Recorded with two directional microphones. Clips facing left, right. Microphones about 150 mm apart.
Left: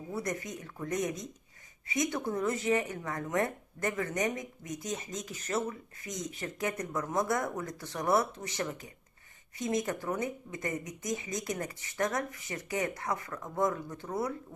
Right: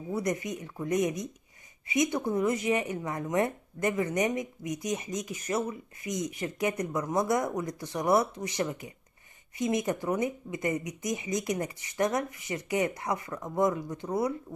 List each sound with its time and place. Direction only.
0.1 s speech: 20° right (ahead or behind)